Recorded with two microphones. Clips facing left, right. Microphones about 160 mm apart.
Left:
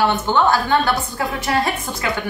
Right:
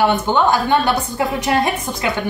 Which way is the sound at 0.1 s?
15° right (ahead or behind).